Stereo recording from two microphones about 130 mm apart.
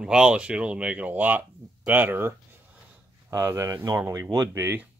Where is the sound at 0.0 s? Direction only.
5° right (ahead or behind).